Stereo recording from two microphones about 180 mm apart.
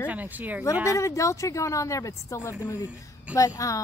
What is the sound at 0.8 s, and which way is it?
Speech, 15° left (ahead or behind).